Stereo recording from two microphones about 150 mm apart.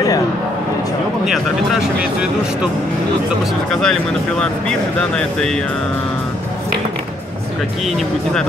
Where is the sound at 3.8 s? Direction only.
5° left (ahead or behind).